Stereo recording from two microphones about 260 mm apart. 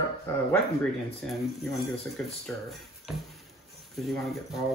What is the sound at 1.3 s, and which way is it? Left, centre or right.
Speech, centre.